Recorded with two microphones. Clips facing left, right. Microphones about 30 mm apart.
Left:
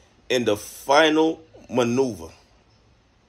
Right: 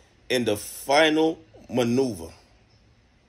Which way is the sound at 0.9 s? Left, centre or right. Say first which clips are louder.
Left 2 dB; right.